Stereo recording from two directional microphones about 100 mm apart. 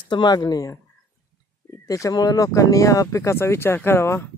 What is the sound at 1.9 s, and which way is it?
Speech, 35° left (ahead or behind).